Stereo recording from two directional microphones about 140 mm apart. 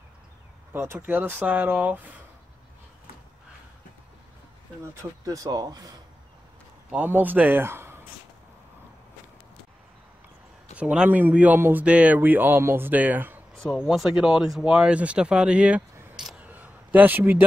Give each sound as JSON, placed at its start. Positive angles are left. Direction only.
{"t": 0.7, "sound": "speech", "side_deg": -15}
{"t": 5.2, "sound": "speech", "side_deg": -25}
{"t": 6.9, "sound": "a man's voice", "side_deg": -10}
{"t": 10.8, "sound": "speech", "side_deg": -10}
{"t": 13.7, "sound": "speech", "side_deg": 0}